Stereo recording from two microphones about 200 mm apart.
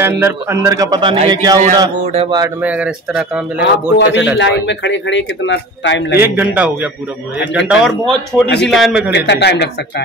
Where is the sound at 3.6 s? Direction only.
60° left (ahead or behind).